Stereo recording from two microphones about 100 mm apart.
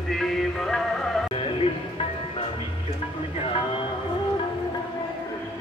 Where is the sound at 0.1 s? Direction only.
5° left (ahead or behind).